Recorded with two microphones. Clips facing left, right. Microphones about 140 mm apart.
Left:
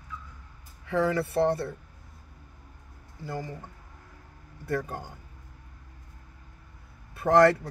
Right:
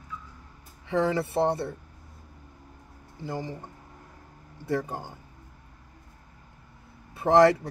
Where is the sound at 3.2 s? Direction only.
25° right (ahead or behind).